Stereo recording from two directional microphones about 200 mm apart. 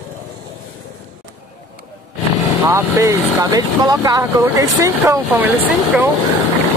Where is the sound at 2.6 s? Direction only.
15° right (ahead or behind).